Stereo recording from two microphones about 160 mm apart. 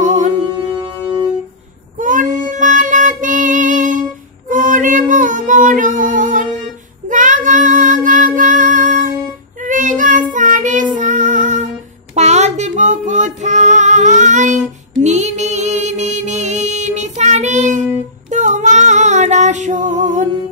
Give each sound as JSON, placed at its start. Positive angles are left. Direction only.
{"t": 0.0, "sound": "music", "side_deg": -50}
{"t": 0.7, "sound": "music", "side_deg": -25}
{"t": 2.0, "sound": "child singing", "side_deg": -55}
{"t": 10.3, "sound": "music", "side_deg": -50}
{"t": 18.3, "sound": "female singing", "side_deg": -50}